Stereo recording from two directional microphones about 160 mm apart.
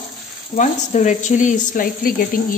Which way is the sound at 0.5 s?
50° left (ahead or behind).